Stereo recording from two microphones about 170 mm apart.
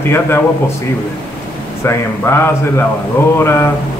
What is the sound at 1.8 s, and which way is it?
A man's voice, 15° left (ahead or behind).